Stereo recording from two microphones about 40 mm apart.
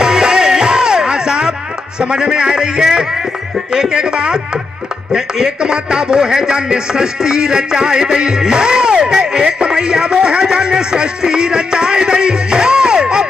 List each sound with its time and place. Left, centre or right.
0.0 s music: centre
2.0 s a man's voice: right